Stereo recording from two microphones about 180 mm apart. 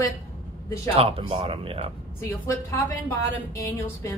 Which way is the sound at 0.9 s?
30° right (ahead or behind).